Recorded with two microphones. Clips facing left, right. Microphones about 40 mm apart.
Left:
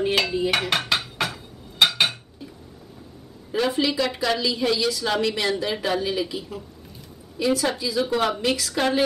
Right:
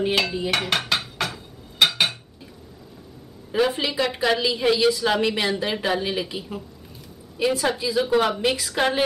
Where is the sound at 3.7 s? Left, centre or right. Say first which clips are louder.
Left 1 dB; right.